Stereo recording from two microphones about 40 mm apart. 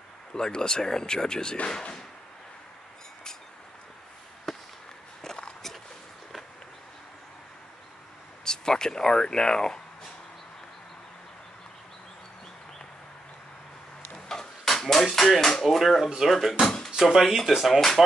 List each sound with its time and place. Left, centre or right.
0.3 s speech: centre
4.5 s chop: centre
5.2 s walk: centre
8.5 s speech: centre
14.1 s a sound: centre
15.6 s speech: centre
16.9 s speech: centre
17.7 s speech: centre